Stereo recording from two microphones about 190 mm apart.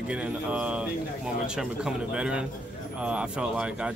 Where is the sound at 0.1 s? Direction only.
5° right (ahead or behind).